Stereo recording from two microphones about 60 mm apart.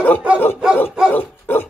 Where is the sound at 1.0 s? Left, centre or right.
Left.